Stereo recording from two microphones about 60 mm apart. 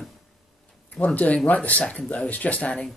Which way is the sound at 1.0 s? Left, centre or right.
Left.